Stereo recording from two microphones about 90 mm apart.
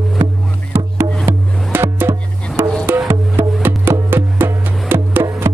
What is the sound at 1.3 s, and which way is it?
Music, 25° right (ahead or behind).